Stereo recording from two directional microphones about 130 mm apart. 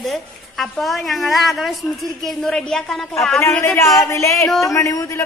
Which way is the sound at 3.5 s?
15° left (ahead or behind).